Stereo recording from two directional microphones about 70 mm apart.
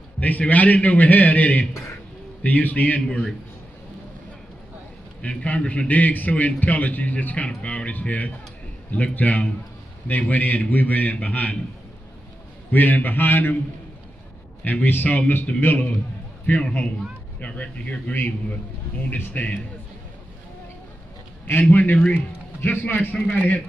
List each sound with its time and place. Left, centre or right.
0.2 s a man's voice: left
5.2 s a man's voice: centre
12.7 s a man's voice: left
14.6 s a man's voice: left
21.5 s a man's voice: left